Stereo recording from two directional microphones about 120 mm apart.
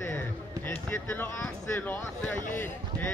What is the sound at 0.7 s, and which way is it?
Speech, 15° left (ahead or behind).